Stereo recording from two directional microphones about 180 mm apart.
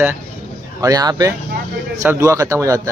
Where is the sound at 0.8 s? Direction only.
20° right (ahead or behind).